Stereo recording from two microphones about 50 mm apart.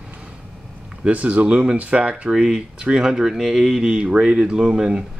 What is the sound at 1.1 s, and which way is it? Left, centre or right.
Speech, right.